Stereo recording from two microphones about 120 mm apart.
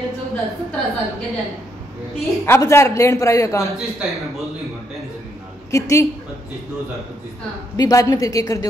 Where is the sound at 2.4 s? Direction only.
20° left (ahead or behind).